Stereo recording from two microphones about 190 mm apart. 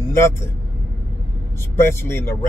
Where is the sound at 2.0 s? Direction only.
15° left (ahead or behind).